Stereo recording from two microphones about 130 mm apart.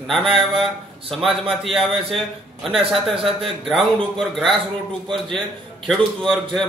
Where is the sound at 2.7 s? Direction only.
45° right (ahead or behind).